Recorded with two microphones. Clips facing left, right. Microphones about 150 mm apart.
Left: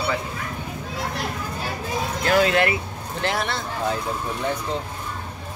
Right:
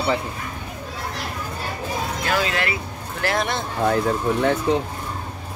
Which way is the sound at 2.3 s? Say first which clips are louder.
Left 6 dB; 50° left (ahead or behind).